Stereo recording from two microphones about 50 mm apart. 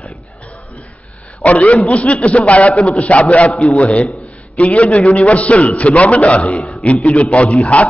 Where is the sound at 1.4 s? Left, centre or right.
Left.